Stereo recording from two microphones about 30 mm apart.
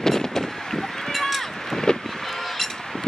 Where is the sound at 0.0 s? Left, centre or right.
Centre.